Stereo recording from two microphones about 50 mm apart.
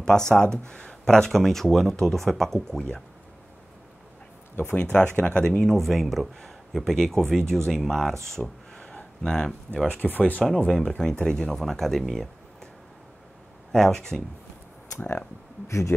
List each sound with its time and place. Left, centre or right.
0.0 s speech: centre
4.6 s speech: left
5.5 s speech: centre
9.7 s speech: right
10.1 s speech: left
10.7 s speech: centre
13.7 s speech: centre